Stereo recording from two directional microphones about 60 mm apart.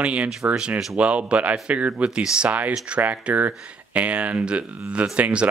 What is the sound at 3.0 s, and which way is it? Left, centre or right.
Speech, right.